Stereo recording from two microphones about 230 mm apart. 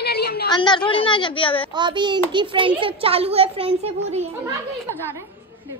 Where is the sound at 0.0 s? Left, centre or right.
Left.